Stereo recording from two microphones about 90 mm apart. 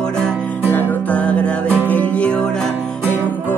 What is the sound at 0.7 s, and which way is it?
Music, 20° left (ahead or behind).